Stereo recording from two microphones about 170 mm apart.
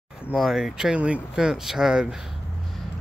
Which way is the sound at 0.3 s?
Centre (ahead or behind).